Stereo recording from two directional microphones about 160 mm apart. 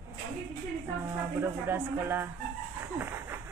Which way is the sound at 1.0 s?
15° right (ahead or behind).